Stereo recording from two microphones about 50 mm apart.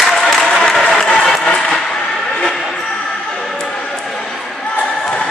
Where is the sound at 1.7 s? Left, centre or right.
Centre.